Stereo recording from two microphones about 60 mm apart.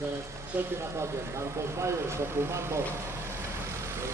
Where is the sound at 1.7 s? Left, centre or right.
Right.